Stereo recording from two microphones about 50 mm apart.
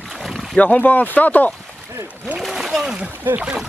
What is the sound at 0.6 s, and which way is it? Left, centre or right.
Speech, left.